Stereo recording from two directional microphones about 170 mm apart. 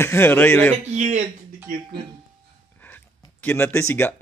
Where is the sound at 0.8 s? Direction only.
45° right (ahead or behind).